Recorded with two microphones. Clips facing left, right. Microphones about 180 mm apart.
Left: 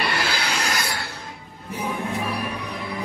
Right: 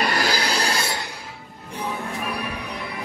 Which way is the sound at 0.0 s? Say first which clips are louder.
Right 3 dB; 40° right (ahead or behind).